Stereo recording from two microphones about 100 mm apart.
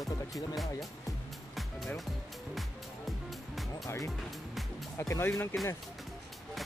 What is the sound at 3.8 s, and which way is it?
Speech, 35° left (ahead or behind).